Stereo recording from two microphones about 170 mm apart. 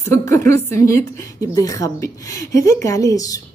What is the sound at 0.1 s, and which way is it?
A woman's voice, 15° left (ahead or behind).